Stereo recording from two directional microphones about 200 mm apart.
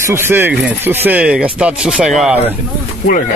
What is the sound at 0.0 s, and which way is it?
Speech, 10° right (ahead or behind).